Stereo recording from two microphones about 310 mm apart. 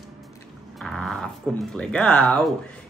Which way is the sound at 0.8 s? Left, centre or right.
Centre.